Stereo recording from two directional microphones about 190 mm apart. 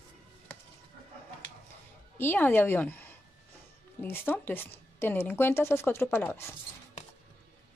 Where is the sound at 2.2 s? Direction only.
10° left (ahead or behind).